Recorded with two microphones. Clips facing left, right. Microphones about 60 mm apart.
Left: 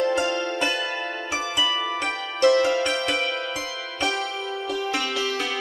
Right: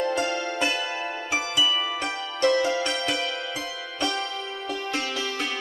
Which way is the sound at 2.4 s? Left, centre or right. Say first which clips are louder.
Left 4 dB; left.